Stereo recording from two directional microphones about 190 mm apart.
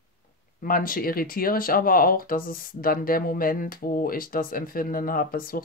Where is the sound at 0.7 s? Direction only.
50° left (ahead or behind).